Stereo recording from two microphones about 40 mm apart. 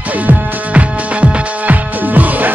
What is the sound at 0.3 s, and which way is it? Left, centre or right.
Music, right.